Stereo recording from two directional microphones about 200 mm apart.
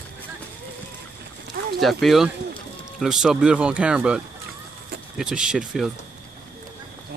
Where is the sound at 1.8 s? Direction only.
Centre (ahead or behind).